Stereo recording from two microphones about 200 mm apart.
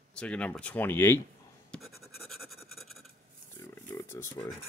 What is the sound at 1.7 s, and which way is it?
Scratch, centre (ahead or behind).